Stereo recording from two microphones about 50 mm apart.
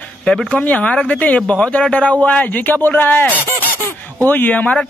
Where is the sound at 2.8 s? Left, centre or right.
Left.